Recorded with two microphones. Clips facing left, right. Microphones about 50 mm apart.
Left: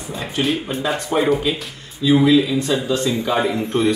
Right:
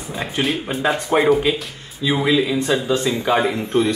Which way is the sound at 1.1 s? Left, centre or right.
Right.